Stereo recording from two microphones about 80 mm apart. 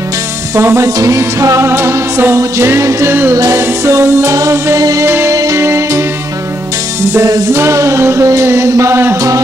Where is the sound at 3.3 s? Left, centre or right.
Right.